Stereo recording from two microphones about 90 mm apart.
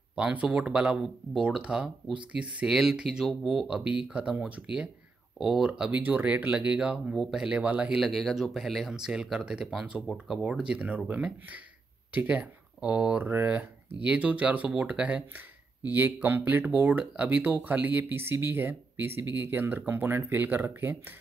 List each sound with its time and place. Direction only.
0.1 s speech: 10° right (ahead or behind)
8.0 s speech: centre (ahead or behind)
10.5 s speech: 10° right (ahead or behind)